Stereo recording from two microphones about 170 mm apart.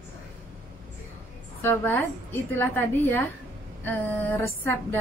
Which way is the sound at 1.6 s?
10° left (ahead or behind).